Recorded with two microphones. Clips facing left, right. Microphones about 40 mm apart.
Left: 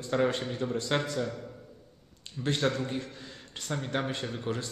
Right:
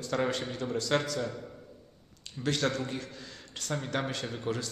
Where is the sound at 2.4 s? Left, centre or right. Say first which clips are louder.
Left 1 dB; left.